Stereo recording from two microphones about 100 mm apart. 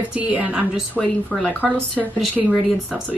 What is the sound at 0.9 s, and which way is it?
Child singing, 5° left (ahead or behind).